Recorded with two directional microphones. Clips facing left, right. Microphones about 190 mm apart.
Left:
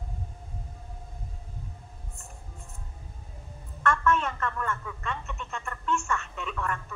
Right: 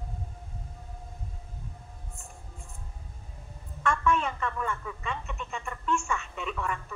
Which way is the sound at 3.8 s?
Centre (ahead or behind).